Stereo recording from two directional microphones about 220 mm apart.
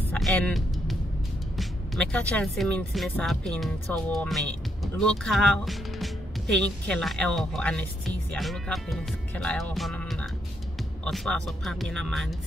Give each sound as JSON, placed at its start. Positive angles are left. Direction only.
{"t": 0.1, "sound": "music", "side_deg": 5}
{"t": 1.6, "sound": "speech", "side_deg": 5}